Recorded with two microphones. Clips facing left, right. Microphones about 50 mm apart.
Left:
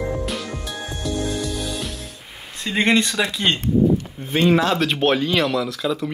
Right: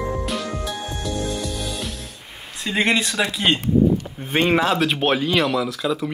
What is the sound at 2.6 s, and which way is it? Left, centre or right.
Speech, centre.